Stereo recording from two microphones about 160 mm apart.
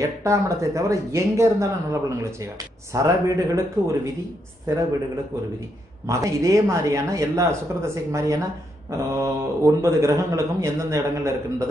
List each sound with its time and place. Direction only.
0.0 s speech: 20° right (ahead or behind)
6.0 s speech: 20° right (ahead or behind)